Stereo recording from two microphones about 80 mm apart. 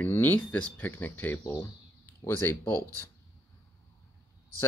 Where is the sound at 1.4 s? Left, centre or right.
Left.